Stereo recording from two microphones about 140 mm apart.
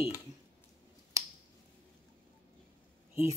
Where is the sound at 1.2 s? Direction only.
20° right (ahead or behind).